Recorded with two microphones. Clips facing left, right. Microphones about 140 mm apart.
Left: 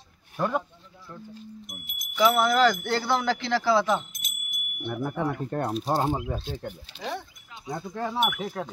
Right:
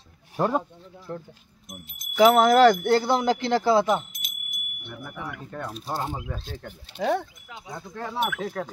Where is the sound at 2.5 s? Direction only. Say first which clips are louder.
Right 6 dB; 60° right (ahead or behind).